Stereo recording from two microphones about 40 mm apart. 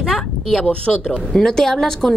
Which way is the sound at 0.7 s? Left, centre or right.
Left.